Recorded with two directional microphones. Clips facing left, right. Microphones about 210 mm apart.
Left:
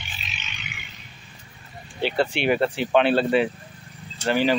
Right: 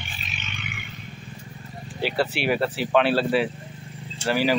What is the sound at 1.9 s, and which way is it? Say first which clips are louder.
Speech: left 2 dB; 5° right (ahead or behind).